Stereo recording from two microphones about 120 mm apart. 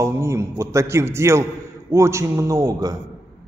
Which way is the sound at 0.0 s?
25° right (ahead or behind).